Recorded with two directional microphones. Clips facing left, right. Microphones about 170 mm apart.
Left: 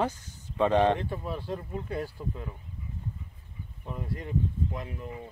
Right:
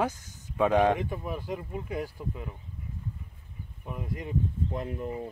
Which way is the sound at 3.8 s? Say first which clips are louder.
Even; 10° right (ahead or behind).